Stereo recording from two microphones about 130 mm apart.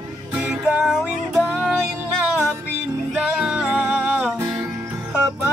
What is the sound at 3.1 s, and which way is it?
Music, 5° right (ahead or behind).